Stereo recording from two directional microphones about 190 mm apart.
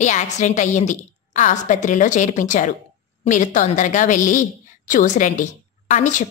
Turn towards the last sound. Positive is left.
turn(degrees=40)  # may be behind; listen again after turning